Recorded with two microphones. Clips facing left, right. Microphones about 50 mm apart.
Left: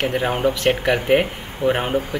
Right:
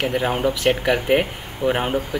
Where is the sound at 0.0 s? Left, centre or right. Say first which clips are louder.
Left 1 dB; centre.